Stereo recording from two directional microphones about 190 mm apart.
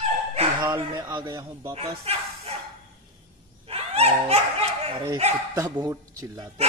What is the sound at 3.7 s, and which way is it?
Dog, 30° right (ahead or behind).